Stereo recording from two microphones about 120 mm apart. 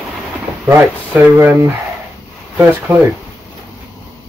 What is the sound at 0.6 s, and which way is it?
Speech, 15° right (ahead or behind).